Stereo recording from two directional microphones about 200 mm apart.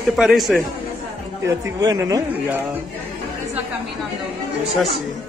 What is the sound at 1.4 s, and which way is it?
Speech, 15° right (ahead or behind).